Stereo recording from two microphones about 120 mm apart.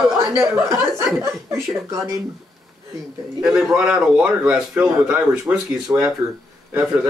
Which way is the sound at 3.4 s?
10° right (ahead or behind).